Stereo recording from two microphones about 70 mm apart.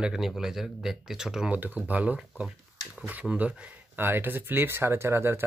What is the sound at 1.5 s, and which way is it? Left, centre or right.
Speech, right.